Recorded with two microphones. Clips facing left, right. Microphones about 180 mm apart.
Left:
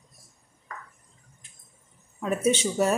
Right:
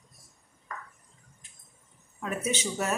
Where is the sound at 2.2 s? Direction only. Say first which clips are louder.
Left 7 dB; 30° left (ahead or behind).